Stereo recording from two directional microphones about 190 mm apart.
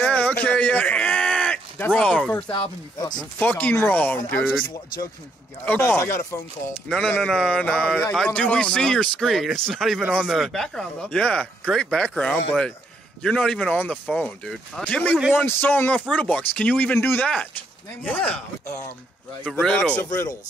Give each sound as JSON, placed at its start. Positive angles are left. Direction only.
{"t": 0.0, "sound": "a sound", "side_deg": 5}
{"t": 2.5, "sound": "speech", "side_deg": 25}
{"t": 3.3, "sound": "speech", "side_deg": 10}
{"t": 5.7, "sound": "a man's voice", "side_deg": 15}
{"t": 19.4, "sound": "a man's voice", "side_deg": 5}